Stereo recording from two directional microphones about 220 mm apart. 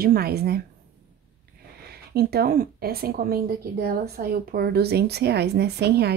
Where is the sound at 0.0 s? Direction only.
45° right (ahead or behind).